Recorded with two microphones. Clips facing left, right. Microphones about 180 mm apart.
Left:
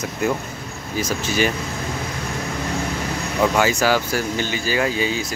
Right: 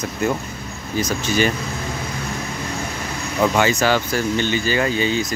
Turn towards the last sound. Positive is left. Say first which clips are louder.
# right 2 dB
turn(degrees=5)  # may be behind; listen again after turning